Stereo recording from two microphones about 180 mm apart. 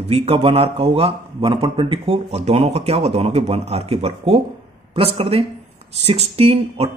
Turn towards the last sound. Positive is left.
turn(degrees=-35)  # may be behind; listen again after turning